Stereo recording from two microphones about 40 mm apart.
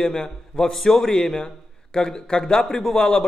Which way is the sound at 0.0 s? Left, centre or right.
Centre.